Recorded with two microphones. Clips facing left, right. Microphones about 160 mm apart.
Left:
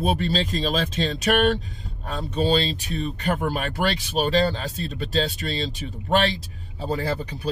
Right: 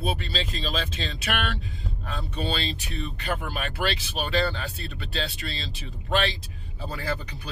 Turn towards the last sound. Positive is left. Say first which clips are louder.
# left 6 dB
turn(degrees=30)  # may be behind; listen again after turning